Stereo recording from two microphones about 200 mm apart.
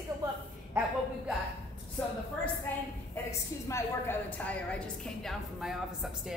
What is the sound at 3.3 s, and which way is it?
A woman's voice, 15° left (ahead or behind).